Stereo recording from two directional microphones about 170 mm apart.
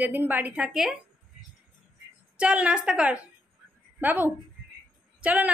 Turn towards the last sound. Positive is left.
turn(degrees=-10)  # may be behind; listen again after turning